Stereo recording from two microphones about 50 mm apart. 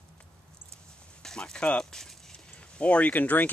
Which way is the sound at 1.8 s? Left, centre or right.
Centre.